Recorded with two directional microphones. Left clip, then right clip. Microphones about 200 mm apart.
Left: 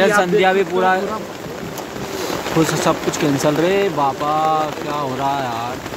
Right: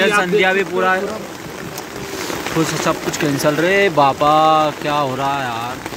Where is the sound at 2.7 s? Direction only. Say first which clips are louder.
Left 1 dB; 5° left (ahead or behind).